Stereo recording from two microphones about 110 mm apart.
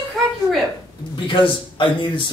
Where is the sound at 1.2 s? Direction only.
50° left (ahead or behind).